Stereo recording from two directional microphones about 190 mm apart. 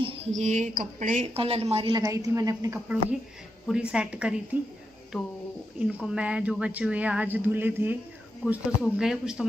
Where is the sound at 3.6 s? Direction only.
5° right (ahead or behind).